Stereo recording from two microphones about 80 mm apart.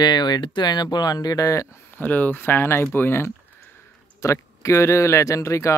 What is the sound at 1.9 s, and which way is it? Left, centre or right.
Speech, left.